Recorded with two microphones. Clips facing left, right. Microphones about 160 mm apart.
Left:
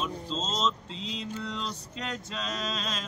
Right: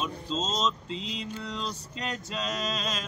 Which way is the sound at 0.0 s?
10° right (ahead or behind).